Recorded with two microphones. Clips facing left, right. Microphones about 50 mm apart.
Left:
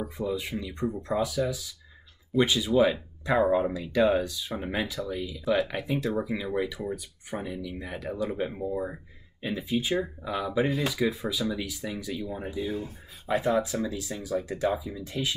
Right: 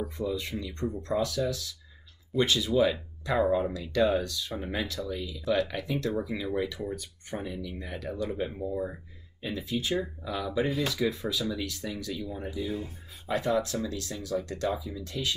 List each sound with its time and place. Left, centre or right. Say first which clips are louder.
0.0 s speech: left 1 dB; centre